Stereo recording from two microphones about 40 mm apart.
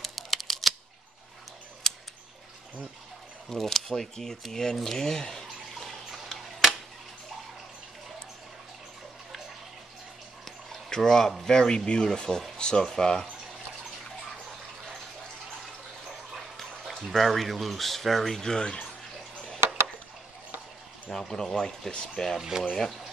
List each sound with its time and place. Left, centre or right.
0.0 s a sound: centre
3.4 s speech: centre
4.7 s a sound: centre
6.2 s tick-tock: centre
10.4 s speech: centre
16.8 s speech: centre
18.4 s speech: centre
21.1 s speech: centre
22.5 s speech: centre